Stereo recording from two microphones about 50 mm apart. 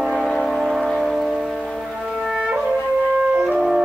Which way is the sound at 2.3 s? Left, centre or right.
Right.